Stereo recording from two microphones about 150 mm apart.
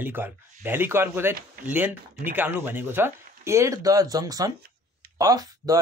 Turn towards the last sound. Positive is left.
turn(degrees=-25)  # may be behind; listen again after turning